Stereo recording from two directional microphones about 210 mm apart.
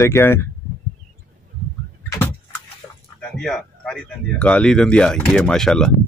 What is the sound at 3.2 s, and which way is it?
Speech, 5° left (ahead or behind).